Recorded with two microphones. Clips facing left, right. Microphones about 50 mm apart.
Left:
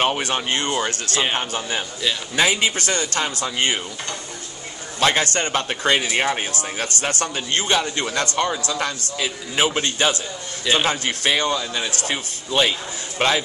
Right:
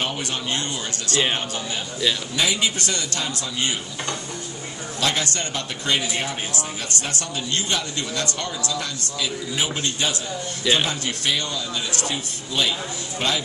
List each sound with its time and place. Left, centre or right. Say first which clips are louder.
0.0 s a man's voice: left 6 dB; left
5.0 s a man's voice: left 5 dB; left
6.0 s a man's voice: left 6 dB; left
6.8 s a man's voice: left 5 dB; left